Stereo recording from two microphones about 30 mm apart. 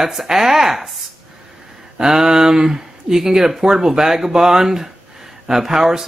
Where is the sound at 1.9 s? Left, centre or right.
Centre.